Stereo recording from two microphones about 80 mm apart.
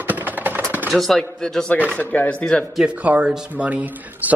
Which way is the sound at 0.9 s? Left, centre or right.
Centre.